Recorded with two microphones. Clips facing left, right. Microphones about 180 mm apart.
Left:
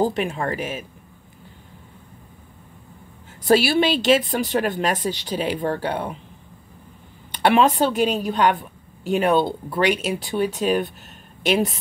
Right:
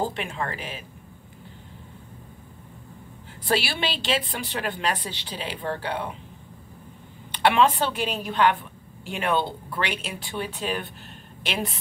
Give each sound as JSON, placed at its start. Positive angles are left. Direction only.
{"t": 0.1, "sound": "a woman's voice", "side_deg": 45}
{"t": 3.4, "sound": "a woman's voice", "side_deg": 45}
{"t": 7.3, "sound": "a woman's voice", "side_deg": 40}